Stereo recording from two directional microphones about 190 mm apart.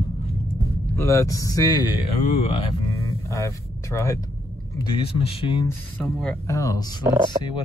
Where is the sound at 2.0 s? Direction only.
30° left (ahead or behind).